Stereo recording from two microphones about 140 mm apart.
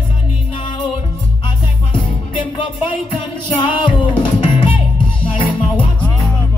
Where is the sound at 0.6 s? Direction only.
35° left (ahead or behind).